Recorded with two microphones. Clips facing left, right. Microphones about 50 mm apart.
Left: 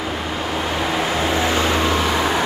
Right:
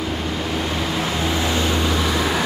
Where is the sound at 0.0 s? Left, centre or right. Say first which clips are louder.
Left 1 dB; centre.